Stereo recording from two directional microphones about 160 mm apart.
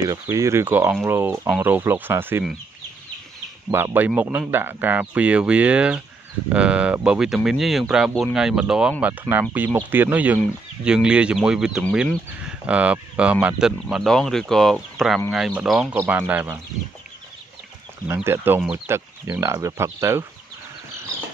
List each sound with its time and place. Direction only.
0.1 s speech: 20° right (ahead or behind)
3.7 s speech: 15° right (ahead or behind)
18.0 s speech: 15° right (ahead or behind)